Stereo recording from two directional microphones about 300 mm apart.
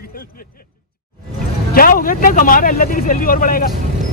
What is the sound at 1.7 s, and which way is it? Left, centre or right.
Speech, left.